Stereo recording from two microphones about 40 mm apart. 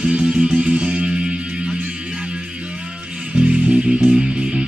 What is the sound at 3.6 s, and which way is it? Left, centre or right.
Music, centre.